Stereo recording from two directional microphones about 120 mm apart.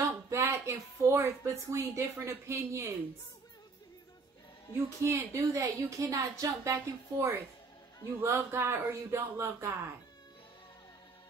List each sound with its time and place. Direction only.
0.3 s speech: 25° right (ahead or behind)
4.8 s a woman's voice: 25° right (ahead or behind)